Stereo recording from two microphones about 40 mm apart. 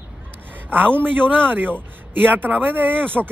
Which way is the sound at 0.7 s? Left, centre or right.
Right.